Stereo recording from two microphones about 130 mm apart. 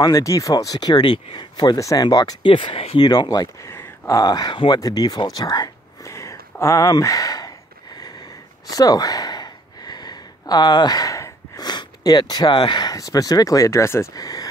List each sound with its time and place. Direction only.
0.0 s speech: 25° left (ahead or behind); by 3.0 s 45° left (ahead or behind)
3.0 s speech: 35° left (ahead or behind)
3.7 s a sound: 20° left (ahead or behind)
4.2 s speech: 30° left (ahead or behind)
8.6 s speech: 30° left (ahead or behind)